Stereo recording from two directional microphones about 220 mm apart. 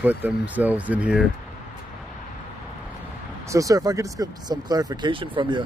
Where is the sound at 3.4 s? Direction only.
15° right (ahead or behind).